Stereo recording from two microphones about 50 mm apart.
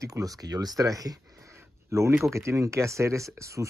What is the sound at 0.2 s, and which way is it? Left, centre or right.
Speech, right.